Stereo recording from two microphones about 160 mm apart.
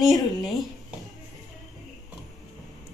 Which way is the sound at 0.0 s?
Centre (ahead or behind).